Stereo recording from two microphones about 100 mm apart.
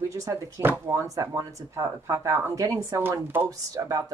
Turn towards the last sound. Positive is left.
turn(degrees=-35)  # may be behind; listen again after turning